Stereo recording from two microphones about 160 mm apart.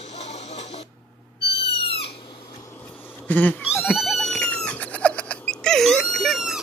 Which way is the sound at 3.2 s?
10° left (ahead or behind).